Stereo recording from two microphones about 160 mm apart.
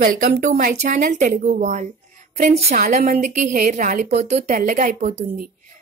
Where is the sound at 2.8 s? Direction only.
55° right (ahead or behind).